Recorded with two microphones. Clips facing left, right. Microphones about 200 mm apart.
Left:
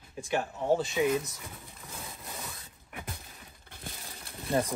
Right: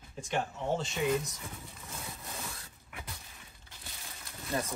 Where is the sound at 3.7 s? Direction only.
55° left (ahead or behind).